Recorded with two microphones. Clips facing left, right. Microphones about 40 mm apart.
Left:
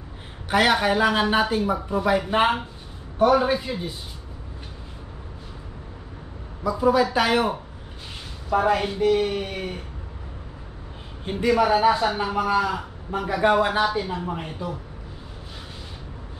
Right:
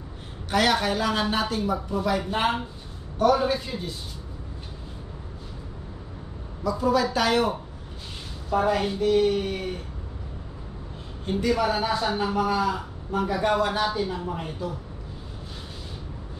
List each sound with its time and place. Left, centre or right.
0.5 s a man's voice: centre
6.6 s a man's voice: centre
11.2 s a man's voice: centre